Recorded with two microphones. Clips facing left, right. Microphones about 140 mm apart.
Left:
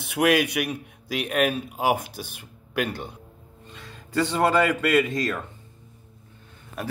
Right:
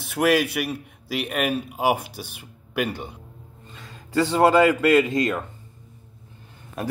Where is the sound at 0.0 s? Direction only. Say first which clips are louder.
Right 1 dB; centre (ahead or behind).